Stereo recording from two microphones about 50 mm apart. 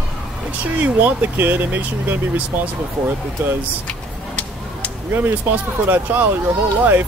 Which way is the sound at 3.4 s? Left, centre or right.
Right.